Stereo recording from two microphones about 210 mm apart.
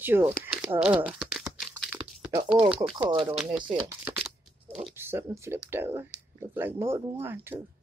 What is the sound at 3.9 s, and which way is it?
Shuffling cards, 10° right (ahead or behind).